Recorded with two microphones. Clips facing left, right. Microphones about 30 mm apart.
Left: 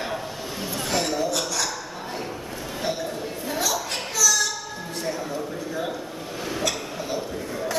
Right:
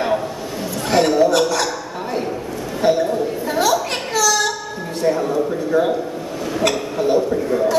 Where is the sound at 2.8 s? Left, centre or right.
Right.